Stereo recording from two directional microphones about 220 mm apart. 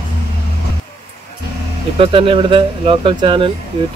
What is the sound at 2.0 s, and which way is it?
Speech, 25° right (ahead or behind).